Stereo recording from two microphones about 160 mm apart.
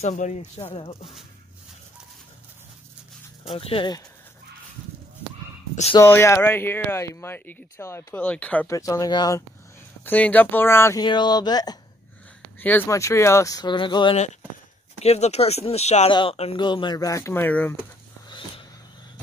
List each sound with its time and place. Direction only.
0.0 s speech: 45° left (ahead or behind)
0.4 s speech: 35° left (ahead or behind)
3.4 s speech: 35° left (ahead or behind)
5.9 s speech: 15° left (ahead or behind)
8.6 s speech: 20° left (ahead or behind)
10.0 s speech: 10° left (ahead or behind)
11.1 s speech: 25° left (ahead or behind)
12.5 s speech: 10° left (ahead or behind); by 14.1 s 30° left (ahead or behind)
15.0 s speech: 45° left (ahead or behind)
16.1 s speech: 30° left (ahead or behind); by 17.7 s 10° left (ahead or behind)